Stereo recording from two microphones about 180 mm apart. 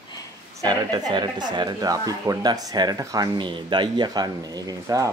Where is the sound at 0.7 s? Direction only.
25° right (ahead or behind).